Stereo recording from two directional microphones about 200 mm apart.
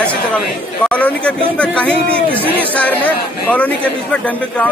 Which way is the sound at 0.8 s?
5° left (ahead or behind).